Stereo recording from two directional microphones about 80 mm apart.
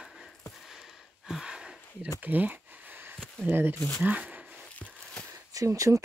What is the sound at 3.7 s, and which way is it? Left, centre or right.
Speech, left.